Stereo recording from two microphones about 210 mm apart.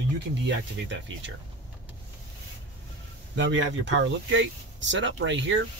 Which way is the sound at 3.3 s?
60° right (ahead or behind).